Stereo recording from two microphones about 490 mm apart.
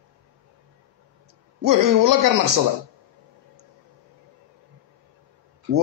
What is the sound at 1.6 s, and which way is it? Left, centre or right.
Speech, right.